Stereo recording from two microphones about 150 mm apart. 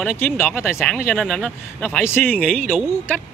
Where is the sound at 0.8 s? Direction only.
Centre (ahead or behind).